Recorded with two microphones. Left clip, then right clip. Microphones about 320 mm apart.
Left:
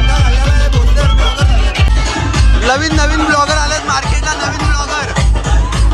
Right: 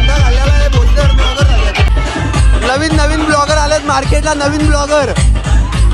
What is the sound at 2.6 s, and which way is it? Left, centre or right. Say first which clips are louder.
Speech: even; centre.